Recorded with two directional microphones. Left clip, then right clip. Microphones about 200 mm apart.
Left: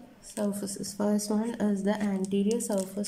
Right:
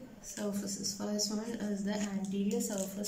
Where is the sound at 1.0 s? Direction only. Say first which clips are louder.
Left 14 dB; 35° left (ahead or behind).